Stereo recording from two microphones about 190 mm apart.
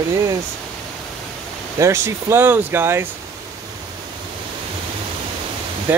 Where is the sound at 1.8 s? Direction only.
15° right (ahead or behind).